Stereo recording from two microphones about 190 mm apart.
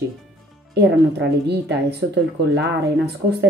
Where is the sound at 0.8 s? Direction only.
60° right (ahead or behind).